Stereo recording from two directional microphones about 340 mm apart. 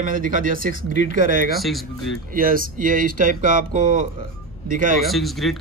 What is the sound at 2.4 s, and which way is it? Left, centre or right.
Speech, right.